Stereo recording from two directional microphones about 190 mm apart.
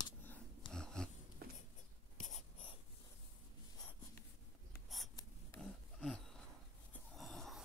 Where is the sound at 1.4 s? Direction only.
50° right (ahead or behind).